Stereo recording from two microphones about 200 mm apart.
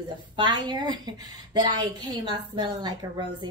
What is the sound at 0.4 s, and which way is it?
A woman's voice, 25° right (ahead or behind).